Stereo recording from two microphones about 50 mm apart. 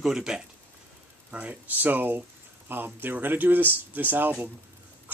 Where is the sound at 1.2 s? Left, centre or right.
Right.